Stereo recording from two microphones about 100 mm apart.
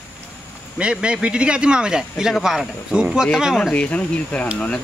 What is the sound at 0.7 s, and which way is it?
A man's voice, 10° right (ahead or behind).